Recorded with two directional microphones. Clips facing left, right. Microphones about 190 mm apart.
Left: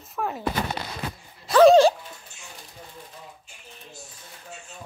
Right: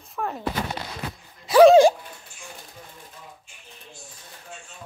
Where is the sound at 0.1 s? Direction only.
Centre (ahead or behind).